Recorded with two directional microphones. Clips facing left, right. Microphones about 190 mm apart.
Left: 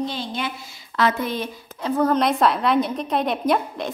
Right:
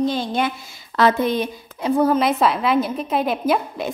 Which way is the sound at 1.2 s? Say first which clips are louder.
Right 6 dB; 15° right (ahead or behind).